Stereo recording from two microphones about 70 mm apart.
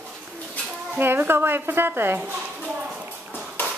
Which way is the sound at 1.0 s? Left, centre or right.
Right.